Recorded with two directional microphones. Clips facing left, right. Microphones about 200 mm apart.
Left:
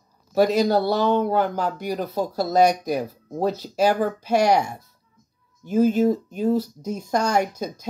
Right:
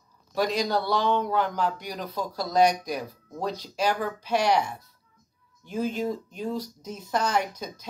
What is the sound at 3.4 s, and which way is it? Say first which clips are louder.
Speech: left 7 dB; 5° left (ahead or behind).